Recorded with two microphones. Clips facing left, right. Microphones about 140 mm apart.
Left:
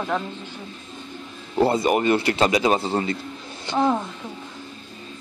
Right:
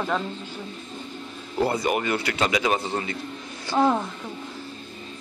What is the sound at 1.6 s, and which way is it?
A man's voice, 25° left (ahead or behind).